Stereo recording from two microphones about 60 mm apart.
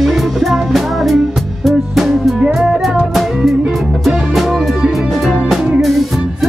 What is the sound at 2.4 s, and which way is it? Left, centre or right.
Music, centre.